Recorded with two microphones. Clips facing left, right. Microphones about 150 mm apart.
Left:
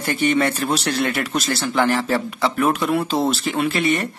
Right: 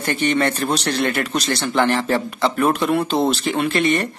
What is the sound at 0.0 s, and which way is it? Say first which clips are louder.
A man's voice: even; 10° left (ahead or behind).